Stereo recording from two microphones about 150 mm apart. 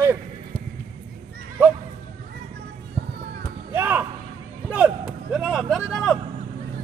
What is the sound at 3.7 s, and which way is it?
Slam, 15° right (ahead or behind).